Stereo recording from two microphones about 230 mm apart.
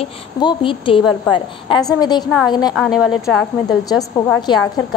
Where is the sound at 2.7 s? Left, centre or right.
Centre.